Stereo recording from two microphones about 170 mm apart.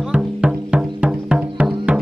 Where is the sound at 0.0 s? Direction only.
5° right (ahead or behind).